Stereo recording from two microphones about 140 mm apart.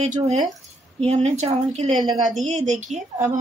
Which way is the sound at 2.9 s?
55° right (ahead or behind).